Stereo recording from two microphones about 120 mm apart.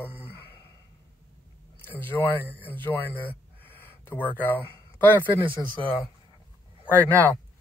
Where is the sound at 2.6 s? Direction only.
15° left (ahead or behind).